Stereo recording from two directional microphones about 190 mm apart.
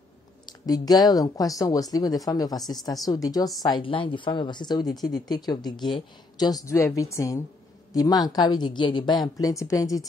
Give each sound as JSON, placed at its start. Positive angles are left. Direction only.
{"t": 0.5, "sound": "a woman's voice", "side_deg": 20}